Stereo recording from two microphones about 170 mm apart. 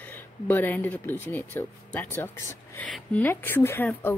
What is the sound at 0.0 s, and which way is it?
Speech, 10° left (ahead or behind).